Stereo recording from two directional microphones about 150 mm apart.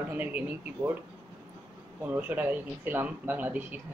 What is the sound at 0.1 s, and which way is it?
Speech, 10° right (ahead or behind).